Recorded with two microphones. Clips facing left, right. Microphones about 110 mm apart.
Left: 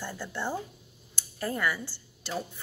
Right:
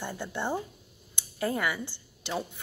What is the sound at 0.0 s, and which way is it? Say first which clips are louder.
Speech: right 1 dB; 20° right (ahead or behind).